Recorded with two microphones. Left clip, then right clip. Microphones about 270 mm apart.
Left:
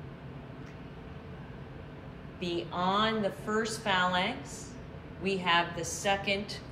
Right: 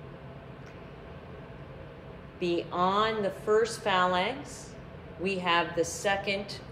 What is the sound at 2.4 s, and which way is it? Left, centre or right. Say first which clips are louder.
A woman's voice: right 4 dB; right.